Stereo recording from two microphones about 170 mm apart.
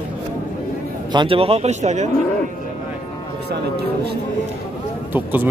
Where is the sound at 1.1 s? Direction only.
30° right (ahead or behind).